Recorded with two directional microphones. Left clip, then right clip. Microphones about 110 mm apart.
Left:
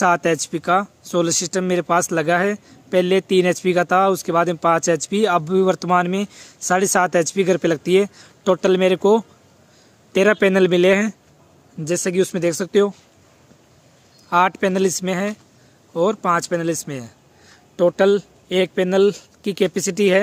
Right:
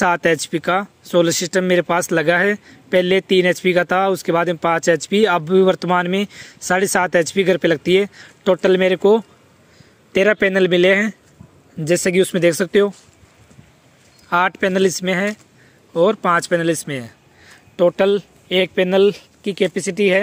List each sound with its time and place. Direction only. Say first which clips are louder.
0.0 s speech: right 1 dB; 10° right (ahead or behind)
11.8 s speech: right 4 dB; 25° right (ahead or behind)
14.3 s speech: even; 5° right (ahead or behind)
15.9 s speech: right 3 dB; 10° right (ahead or behind)
17.5 s speech: right 2 dB; 5° right (ahead or behind)
19.4 s speech: right 1 dB; 20° left (ahead or behind)